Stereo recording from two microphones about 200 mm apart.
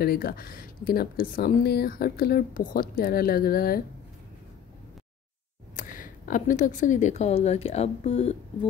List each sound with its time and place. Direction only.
0.0 s speech: 50° left (ahead or behind)
5.8 s a woman's voice: 40° left (ahead or behind)